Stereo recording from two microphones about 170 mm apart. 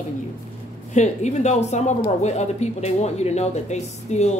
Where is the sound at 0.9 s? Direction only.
45° left (ahead or behind).